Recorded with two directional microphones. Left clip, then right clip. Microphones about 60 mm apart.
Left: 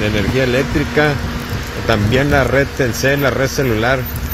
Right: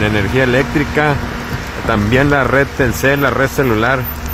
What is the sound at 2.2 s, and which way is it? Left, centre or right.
A man's voice, right.